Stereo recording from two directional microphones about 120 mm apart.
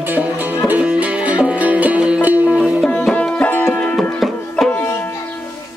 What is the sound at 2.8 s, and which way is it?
Music, 10° left (ahead or behind).